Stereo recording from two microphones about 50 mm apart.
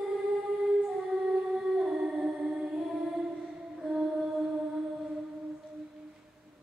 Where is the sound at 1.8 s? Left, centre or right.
Centre.